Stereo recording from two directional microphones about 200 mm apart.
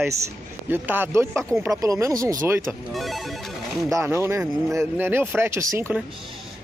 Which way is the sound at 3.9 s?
15° right (ahead or behind).